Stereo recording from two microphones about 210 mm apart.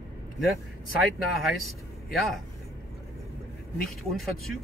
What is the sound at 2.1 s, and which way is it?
Speech, centre (ahead or behind).